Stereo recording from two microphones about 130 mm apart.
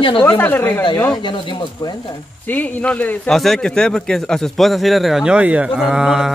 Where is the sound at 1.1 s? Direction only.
40° left (ahead or behind).